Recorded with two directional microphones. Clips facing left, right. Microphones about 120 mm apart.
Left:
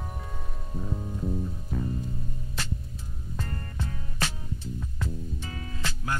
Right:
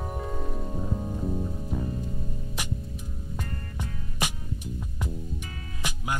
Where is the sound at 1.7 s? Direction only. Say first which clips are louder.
Even; 15° right (ahead or behind).